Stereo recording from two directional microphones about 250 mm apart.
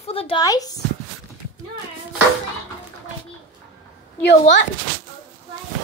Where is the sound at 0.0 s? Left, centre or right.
Left.